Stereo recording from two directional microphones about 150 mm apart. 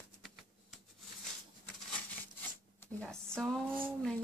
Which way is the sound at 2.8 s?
5° left (ahead or behind).